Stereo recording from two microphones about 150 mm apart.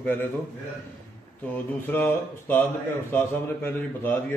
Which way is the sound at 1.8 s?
15° left (ahead or behind).